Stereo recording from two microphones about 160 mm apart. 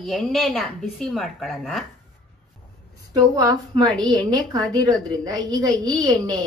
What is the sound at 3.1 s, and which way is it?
A woman's voice, 25° right (ahead or behind).